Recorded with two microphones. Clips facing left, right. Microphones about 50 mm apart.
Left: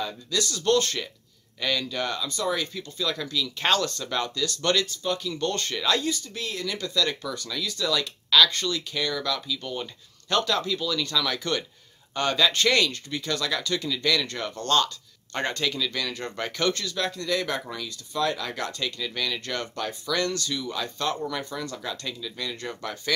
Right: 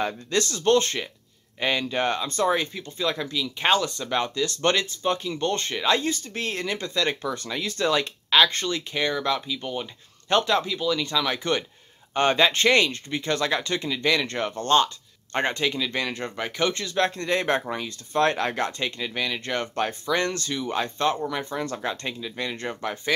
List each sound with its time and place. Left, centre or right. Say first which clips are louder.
0.0 s speech: right 4 dB; right
16.3 s speech: left 2 dB; centre; by 18.6 s right
18.6 s speech: right 3 dB; right
19.7 s speech: right 5 dB; right